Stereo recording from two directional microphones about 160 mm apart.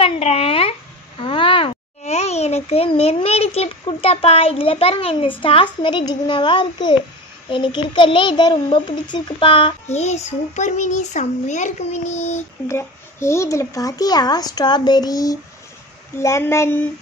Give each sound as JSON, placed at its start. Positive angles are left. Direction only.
{"t": 0.0, "sound": "a sound", "side_deg": 35}
{"t": 5.4, "sound": "a child's voice", "side_deg": 30}
{"t": 9.8, "sound": "a child's voice", "side_deg": 45}
{"t": 12.6, "sound": "a child's voice", "side_deg": 15}